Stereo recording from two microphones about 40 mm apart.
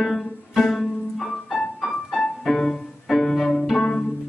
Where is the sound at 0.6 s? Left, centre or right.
Centre.